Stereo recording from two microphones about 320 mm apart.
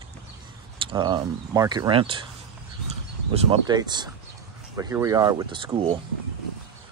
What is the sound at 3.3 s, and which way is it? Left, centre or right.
Speech, centre.